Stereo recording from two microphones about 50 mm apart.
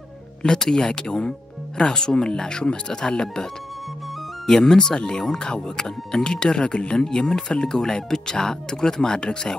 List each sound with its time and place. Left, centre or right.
0.4 s speech: centre
4.5 s speech: centre